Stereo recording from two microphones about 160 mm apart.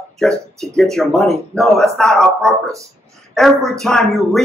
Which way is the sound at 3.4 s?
Centre (ahead or behind).